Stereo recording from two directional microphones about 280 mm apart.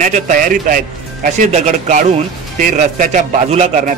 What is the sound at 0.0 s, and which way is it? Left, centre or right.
A man's voice, right.